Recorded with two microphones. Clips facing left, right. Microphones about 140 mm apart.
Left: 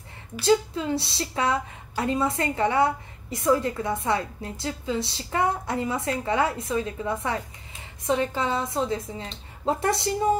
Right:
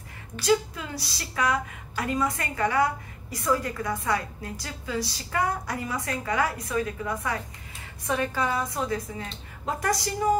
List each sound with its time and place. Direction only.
0.4 s a woman's voice: 25° left (ahead or behind)